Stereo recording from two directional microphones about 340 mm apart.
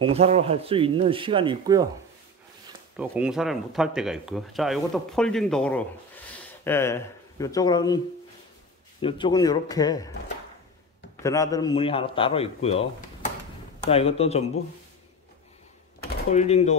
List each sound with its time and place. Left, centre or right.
0.0 s speech: centre
3.0 s speech: centre
9.0 s a man's voice: centre
11.2 s a man's voice: centre
16.3 s speech: centre